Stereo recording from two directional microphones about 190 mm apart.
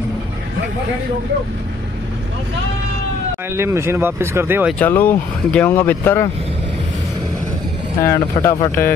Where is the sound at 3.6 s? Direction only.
15° right (ahead or behind).